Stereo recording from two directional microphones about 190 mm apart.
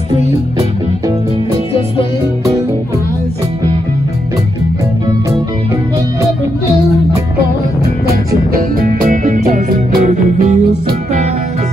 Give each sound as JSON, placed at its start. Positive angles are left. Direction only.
{"t": 0.6, "sound": "music", "side_deg": -20}
{"t": 8.5, "sound": "music", "side_deg": -45}